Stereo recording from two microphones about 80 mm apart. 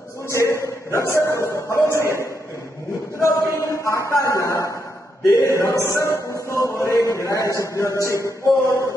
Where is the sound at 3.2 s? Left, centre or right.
Left.